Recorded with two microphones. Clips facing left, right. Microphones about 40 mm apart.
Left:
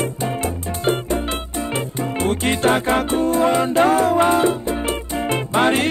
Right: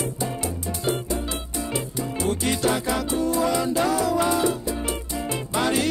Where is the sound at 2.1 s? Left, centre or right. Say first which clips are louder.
Left 4 dB; left.